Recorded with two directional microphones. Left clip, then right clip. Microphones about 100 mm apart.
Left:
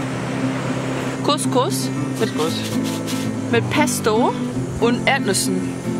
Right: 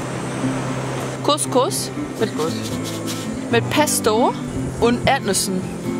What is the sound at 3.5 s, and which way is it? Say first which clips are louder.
A woman's voice: right 1 dB; 20° right (ahead or behind).